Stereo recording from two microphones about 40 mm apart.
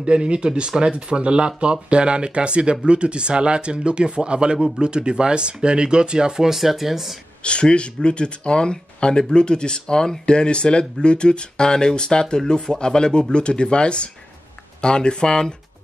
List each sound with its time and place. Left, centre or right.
0.0 s speech: right; by 7.2 s centre
7.4 s speech: left